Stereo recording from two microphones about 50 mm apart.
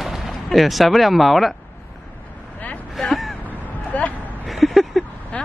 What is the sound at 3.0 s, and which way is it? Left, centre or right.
Vehicle, centre.